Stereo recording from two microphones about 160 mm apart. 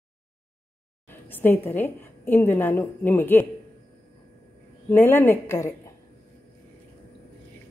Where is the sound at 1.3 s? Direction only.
10° left (ahead or behind).